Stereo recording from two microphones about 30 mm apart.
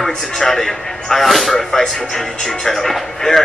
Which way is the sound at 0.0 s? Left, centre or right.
Centre.